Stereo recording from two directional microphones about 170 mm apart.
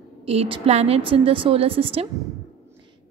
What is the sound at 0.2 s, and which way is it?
A woman's voice, 35° right (ahead or behind).